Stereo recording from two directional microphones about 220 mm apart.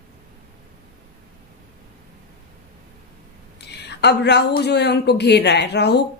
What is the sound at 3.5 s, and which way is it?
A woman's voice, 50° left (ahead or behind).